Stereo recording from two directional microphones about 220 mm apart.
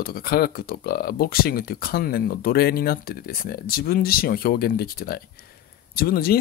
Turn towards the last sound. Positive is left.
turn(degrees=45)  # may be behind; listen again after turning